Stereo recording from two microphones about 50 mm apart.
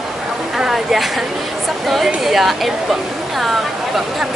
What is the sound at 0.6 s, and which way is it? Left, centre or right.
Speech, centre.